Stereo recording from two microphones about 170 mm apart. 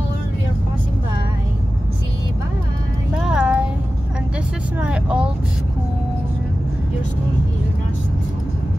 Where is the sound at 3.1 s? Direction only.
5° right (ahead or behind).